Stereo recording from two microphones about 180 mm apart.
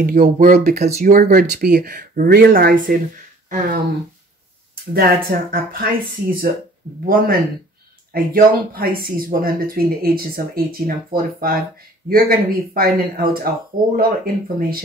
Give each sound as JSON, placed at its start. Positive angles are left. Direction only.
{"t": 0.0, "sound": "speech", "side_deg": -50}
{"t": 0.8, "sound": "speech", "side_deg": -35}
{"t": 1.1, "sound": "speech", "side_deg": -55}
{"t": 4.9, "sound": "speech", "side_deg": -55}
{"t": 7.1, "sound": "speech", "side_deg": -55}